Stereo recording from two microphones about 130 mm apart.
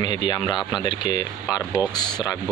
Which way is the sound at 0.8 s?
35° left (ahead or behind).